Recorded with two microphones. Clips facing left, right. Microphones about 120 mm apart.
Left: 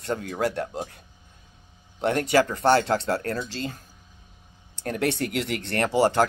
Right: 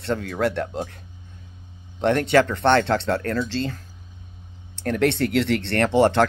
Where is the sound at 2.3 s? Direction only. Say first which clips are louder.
Right 1 dB; 35° left (ahead or behind).